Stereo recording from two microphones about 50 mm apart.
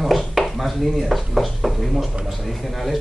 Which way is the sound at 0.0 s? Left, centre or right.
Centre.